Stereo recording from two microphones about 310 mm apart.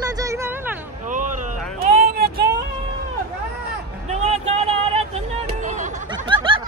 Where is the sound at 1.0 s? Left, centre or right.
Right.